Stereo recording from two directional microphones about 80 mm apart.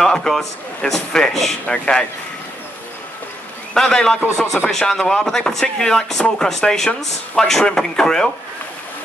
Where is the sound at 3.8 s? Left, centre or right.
Centre.